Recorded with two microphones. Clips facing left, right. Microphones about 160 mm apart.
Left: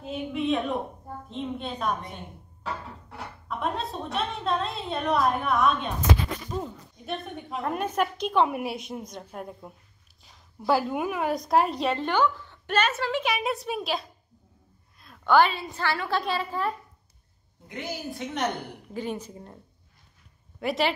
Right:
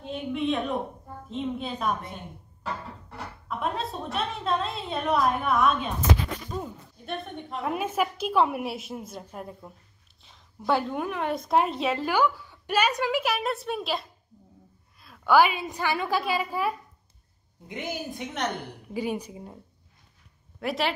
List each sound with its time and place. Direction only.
0.0 s a woman's voice: centre (ahead or behind)
15.0 s a sound: centre (ahead or behind)
15.6 s a woman's voice: 15° right (ahead or behind)
20.6 s a woman's voice: centre (ahead or behind)